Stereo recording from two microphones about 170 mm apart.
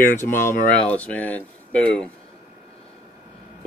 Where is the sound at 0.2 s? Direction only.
50° left (ahead or behind).